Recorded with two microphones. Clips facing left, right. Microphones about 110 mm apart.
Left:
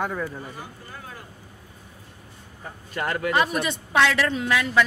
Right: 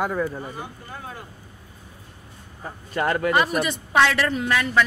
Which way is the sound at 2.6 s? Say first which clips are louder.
Right 5 dB; 35° right (ahead or behind).